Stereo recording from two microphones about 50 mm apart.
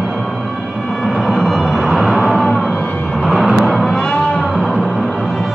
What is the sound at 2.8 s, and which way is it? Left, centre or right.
Music, left.